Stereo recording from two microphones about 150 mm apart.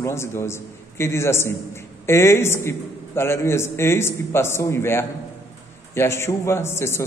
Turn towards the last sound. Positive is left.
turn(degrees=15)  # may be behind; listen again after turning